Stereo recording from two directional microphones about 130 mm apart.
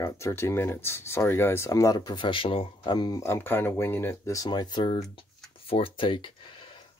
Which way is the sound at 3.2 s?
20° left (ahead or behind).